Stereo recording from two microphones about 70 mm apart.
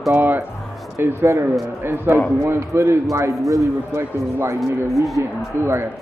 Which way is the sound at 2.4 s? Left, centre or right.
Right.